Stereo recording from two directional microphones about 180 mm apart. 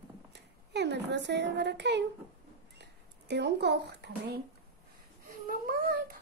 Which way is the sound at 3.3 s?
70° right (ahead or behind).